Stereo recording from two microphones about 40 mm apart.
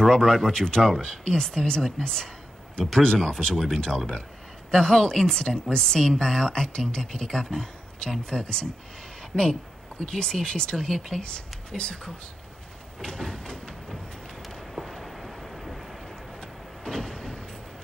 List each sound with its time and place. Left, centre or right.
0.0 s speech: centre
13.0 s a sound: centre
14.8 s vehicle: centre
16.3 s vehicle: centre